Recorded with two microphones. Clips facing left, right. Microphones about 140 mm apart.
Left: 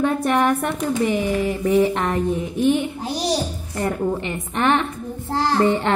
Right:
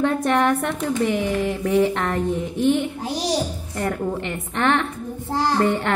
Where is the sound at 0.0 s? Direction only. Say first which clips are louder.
Even; 10° left (ahead or behind).